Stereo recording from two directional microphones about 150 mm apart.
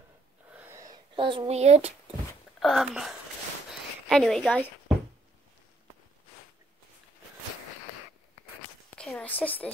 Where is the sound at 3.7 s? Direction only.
Centre (ahead or behind).